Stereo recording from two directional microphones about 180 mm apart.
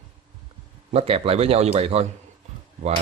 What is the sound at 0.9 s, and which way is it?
Speech, 35° right (ahead or behind).